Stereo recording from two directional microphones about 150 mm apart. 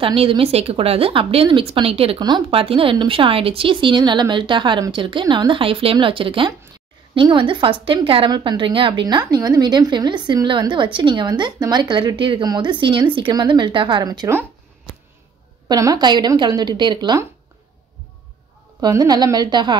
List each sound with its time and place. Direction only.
0.0 s a woman's voice: 35° right (ahead or behind)
15.7 s a woman's voice: 25° right (ahead or behind)
18.8 s a woman's voice: 25° right (ahead or behind)